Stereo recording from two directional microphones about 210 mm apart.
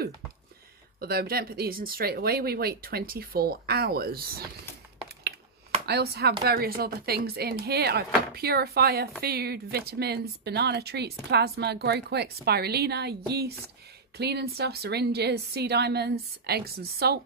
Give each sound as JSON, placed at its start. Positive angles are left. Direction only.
{"t": 0.9, "sound": "speech", "side_deg": -45}
{"t": 5.9, "sound": "speech", "side_deg": -50}